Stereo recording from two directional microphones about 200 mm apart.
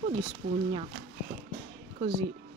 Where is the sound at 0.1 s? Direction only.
25° right (ahead or behind).